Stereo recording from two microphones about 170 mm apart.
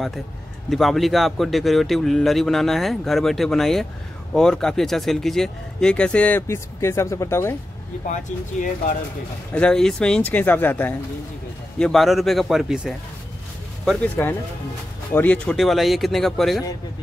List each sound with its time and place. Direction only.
0.7 s speech: centre (ahead or behind)
8.1 s speech: 50° left (ahead or behind)
9.5 s speech: 5° left (ahead or behind)
11.8 s speech: centre (ahead or behind)
14.2 s speech: 15° left (ahead or behind)